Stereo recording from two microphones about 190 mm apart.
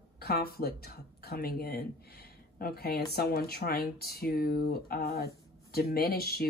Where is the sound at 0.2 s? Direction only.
55° left (ahead or behind).